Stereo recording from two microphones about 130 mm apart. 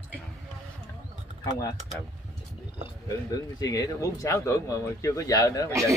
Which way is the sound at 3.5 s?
30° left (ahead or behind).